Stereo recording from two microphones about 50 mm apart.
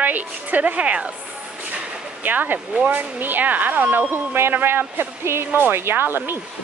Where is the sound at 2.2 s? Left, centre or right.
Right.